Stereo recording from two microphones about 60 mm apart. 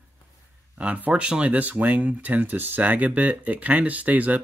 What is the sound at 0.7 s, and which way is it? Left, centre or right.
Speech, right.